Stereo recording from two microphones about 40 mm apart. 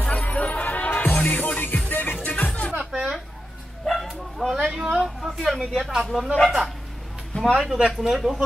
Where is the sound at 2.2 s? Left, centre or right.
Left.